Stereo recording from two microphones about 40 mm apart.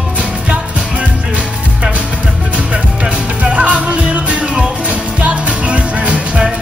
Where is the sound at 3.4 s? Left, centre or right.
Right.